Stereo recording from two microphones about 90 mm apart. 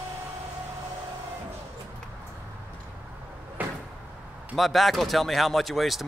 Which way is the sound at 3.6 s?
20° right (ahead or behind).